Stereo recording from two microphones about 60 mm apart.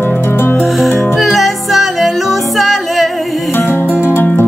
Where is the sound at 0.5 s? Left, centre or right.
Centre.